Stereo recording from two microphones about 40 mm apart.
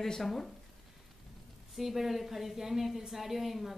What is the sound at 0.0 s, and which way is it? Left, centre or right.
Speech, centre.